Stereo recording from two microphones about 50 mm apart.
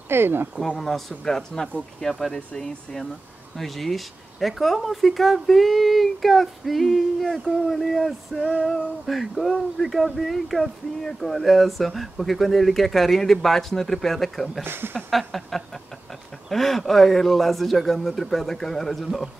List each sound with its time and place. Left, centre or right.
0.1 s speech: right
0.7 s speech: centre
14.6 s speech: right
15.0 s speech: centre